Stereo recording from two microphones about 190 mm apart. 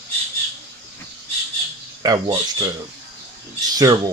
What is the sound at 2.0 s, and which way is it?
Speech, 20° right (ahead or behind).